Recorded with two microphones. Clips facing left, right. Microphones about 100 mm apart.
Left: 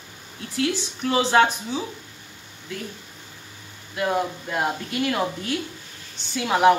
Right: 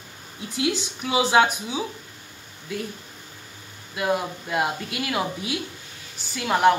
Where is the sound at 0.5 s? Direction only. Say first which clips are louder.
Left 1 dB; 10° right (ahead or behind).